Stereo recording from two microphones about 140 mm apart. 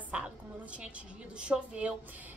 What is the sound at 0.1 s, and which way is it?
A woman's voice, 10° right (ahead or behind).